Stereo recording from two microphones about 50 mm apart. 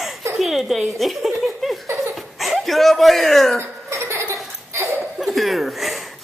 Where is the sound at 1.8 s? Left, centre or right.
Right.